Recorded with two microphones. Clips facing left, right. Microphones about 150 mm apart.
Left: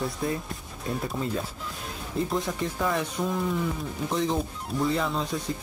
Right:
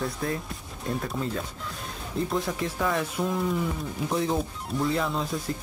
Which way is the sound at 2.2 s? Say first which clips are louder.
Even; centre (ahead or behind).